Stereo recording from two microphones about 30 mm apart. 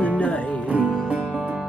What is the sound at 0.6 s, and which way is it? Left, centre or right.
Music, right.